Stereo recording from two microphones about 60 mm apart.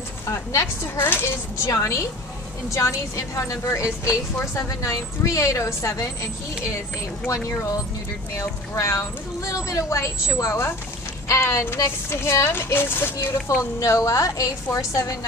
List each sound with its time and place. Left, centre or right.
0.3 s a woman's voice: left
0.9 s a child's voice: left
1.6 s a woman's voice: left
8.4 s a woman's voice: left
12.5 s a child's voice: left
13.7 s a woman's voice: left